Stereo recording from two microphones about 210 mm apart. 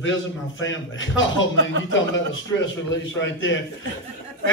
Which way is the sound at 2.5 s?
60° left (ahead or behind).